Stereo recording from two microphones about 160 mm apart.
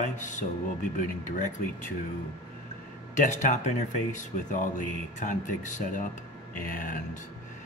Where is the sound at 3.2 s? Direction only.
50° left (ahead or behind).